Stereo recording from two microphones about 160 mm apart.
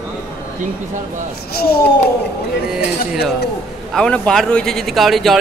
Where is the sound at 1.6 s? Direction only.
70° left (ahead or behind).